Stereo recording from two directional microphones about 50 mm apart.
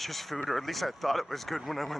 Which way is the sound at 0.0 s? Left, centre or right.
Centre.